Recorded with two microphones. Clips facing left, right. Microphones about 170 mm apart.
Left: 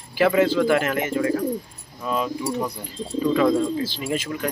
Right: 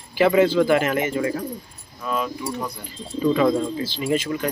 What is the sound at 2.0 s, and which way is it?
Speech, 25° left (ahead or behind).